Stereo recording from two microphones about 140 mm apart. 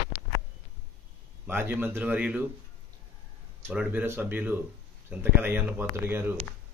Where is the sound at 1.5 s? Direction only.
15° right (ahead or behind).